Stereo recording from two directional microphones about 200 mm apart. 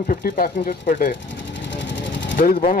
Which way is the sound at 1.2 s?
65° left (ahead or behind).